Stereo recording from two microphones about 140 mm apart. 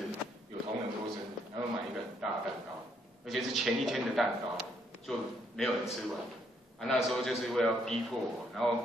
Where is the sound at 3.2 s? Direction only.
Centre (ahead or behind).